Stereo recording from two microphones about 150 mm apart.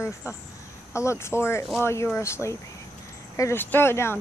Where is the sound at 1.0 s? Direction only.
20° left (ahead or behind).